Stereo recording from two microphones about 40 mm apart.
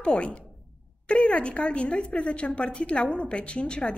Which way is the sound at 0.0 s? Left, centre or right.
Left.